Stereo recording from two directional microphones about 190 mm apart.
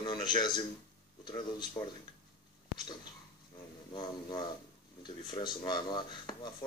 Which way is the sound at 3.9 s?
25° left (ahead or behind).